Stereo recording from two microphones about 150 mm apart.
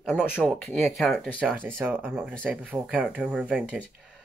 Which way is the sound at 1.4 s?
10° right (ahead or behind).